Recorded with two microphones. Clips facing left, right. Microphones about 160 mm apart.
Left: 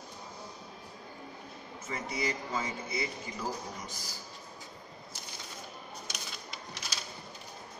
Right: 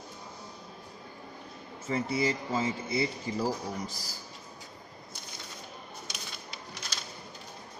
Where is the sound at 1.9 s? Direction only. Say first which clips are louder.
Right 6 dB; 30° right (ahead or behind).